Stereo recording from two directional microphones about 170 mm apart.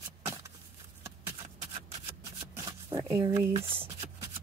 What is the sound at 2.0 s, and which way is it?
Shuffling cards, 15° right (ahead or behind).